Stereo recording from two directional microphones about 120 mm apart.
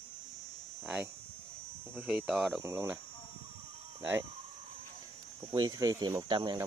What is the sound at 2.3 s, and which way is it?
Speech, centre (ahead or behind).